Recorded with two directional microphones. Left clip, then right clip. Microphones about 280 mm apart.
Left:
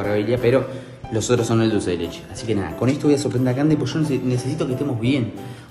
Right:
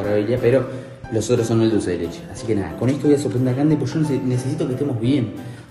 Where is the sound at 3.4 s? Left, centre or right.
Centre.